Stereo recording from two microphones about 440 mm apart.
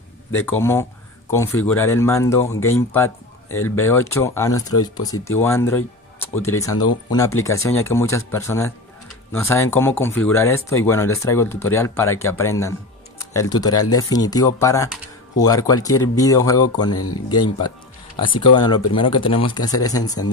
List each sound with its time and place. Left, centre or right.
0.5 s speech: centre
3.4 s speech: left
3.8 s speech: centre
16.9 s speech: left
17.6 s speech: centre